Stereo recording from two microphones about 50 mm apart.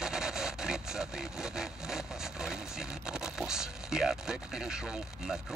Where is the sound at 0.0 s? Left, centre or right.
Centre.